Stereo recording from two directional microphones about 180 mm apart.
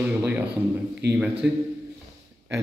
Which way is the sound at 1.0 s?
65° right (ahead or behind).